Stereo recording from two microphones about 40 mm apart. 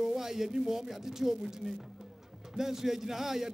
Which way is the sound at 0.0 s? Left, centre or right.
Centre.